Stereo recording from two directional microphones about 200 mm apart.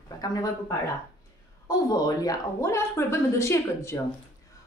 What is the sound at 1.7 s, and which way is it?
A woman's voice, 20° left (ahead or behind).